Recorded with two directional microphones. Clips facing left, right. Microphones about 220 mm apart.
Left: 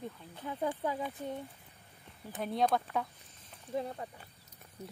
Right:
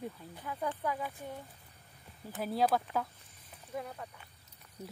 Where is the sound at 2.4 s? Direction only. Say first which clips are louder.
Even; 5° right (ahead or behind).